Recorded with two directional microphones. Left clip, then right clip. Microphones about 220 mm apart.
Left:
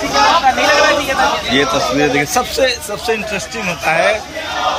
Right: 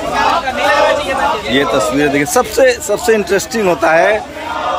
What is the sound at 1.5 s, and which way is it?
A man's voice, 10° right (ahead or behind).